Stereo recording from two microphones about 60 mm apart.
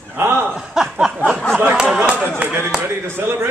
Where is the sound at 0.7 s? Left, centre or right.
Centre.